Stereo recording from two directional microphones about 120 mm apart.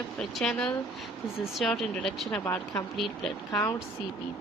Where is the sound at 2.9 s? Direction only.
Centre (ahead or behind).